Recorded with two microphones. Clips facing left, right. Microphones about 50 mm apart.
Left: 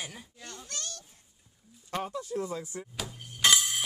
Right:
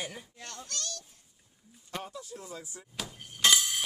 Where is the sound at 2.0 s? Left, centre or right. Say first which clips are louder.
Left 9 dB; left.